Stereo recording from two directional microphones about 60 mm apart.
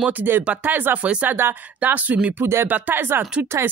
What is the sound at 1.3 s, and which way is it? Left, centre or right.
Speech, right.